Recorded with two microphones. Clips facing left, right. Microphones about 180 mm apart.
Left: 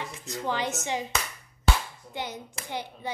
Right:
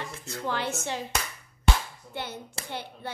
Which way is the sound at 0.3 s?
15° left (ahead or behind).